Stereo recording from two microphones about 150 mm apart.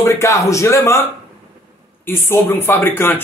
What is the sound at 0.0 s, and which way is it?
A man's voice, 20° left (ahead or behind).